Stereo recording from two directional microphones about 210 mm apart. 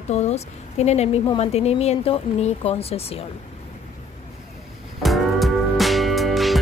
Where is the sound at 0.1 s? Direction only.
30° left (ahead or behind).